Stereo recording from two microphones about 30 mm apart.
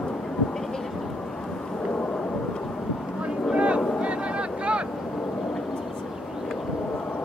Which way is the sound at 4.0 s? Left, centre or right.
Right.